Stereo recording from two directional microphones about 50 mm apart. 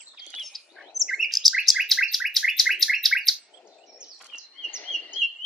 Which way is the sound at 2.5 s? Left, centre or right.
Centre.